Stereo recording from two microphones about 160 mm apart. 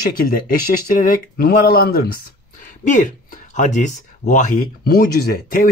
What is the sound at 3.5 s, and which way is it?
Speech, 50° left (ahead or behind).